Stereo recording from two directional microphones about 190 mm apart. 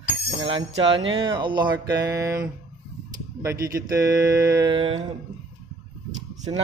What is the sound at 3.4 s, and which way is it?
Speech, 15° right (ahead or behind).